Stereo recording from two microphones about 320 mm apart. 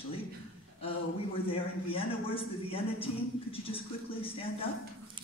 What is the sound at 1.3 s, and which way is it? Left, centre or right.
A man's voice, centre.